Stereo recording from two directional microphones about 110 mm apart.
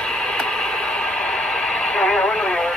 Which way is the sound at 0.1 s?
5° left (ahead or behind).